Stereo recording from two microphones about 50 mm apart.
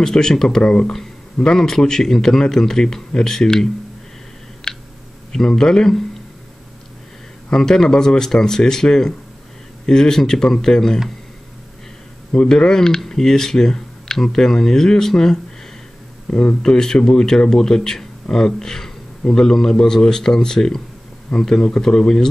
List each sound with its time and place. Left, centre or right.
0.0 s speech: centre
4.6 s a sound: centre
5.3 s speech: centre
7.5 s speech: centre
12.3 s speech: centre